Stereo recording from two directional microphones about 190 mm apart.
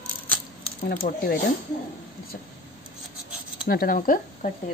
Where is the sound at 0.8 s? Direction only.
55° left (ahead or behind).